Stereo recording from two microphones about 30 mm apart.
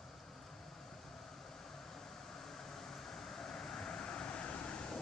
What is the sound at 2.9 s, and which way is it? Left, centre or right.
Vehicle, left.